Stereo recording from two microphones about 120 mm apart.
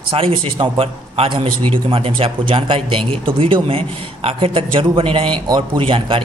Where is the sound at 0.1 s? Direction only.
50° right (ahead or behind).